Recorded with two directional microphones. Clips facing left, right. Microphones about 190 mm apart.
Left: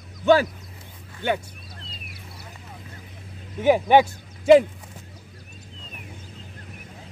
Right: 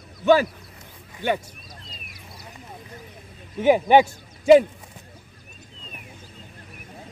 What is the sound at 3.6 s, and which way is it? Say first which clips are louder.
Speech: right 1 dB; 15° right (ahead or behind).